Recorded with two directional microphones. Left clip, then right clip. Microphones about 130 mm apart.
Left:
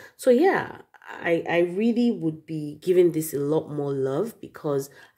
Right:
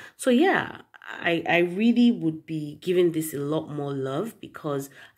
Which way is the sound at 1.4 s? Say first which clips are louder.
Right 1 dB; 5° left (ahead or behind).